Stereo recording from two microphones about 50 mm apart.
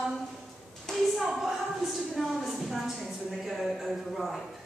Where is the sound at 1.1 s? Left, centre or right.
Centre.